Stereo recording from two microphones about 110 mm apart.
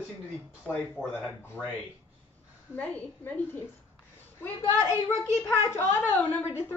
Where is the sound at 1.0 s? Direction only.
15° left (ahead or behind).